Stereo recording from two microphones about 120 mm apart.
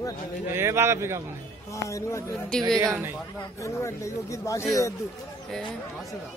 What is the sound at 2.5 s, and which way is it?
Speech, 5° left (ahead or behind).